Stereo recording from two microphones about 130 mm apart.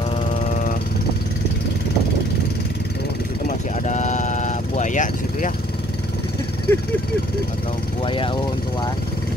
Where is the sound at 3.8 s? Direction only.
65° left (ahead or behind).